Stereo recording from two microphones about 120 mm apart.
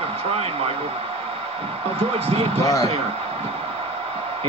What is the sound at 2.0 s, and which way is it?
Speech, 55° right (ahead or behind).